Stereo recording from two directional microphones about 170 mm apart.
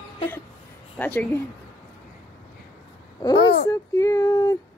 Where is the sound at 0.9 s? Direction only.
10° left (ahead or behind).